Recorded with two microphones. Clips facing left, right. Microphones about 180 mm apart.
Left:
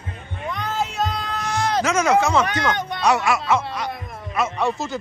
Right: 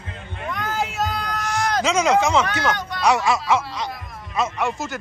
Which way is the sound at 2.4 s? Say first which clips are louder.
Left 1 dB; 20° left (ahead or behind).